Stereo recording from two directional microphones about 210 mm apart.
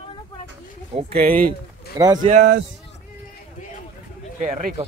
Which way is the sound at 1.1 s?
45° right (ahead or behind).